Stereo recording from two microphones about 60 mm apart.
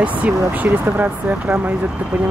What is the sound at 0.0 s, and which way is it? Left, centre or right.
Speech, right.